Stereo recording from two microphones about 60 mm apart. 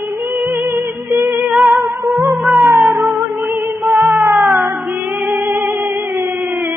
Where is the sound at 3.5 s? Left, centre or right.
Right.